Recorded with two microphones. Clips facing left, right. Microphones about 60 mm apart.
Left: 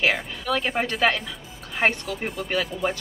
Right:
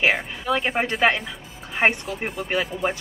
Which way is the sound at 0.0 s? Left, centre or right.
Right.